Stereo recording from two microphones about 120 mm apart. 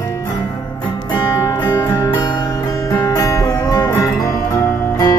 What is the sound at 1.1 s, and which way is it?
Music, 20° left (ahead or behind).